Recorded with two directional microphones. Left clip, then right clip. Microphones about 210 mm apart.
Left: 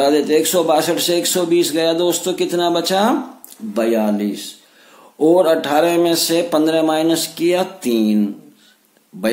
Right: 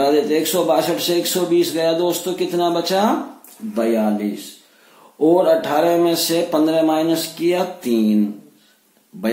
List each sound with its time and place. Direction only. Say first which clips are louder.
0.0 s a man's voice: left 2 dB; 40° left (ahead or behind)